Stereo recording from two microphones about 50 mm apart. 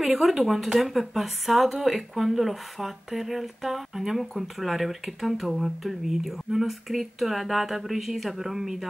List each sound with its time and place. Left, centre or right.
0.0 s a woman's voice: centre